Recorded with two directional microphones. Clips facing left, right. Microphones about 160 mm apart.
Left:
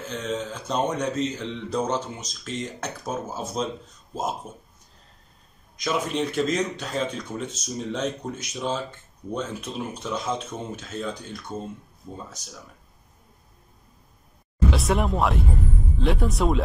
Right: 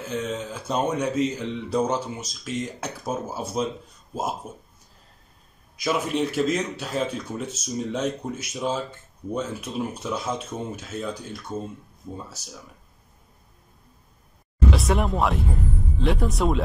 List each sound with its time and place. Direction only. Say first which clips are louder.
0.0 s speech: right 1 dB; 10° right (ahead or behind)
5.8 s speech: right 1 dB; 5° right (ahead or behind)
14.7 s speech: right 1 dB; centre (ahead or behind)